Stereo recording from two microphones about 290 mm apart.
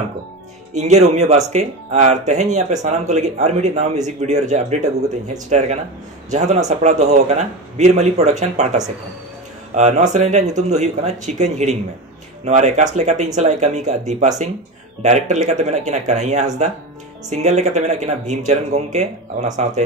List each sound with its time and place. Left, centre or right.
0.7 s speech: right